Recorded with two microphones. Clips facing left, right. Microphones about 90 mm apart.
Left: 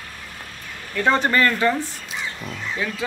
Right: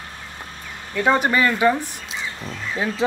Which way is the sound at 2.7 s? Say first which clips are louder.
Right 3 dB; 30° right (ahead or behind).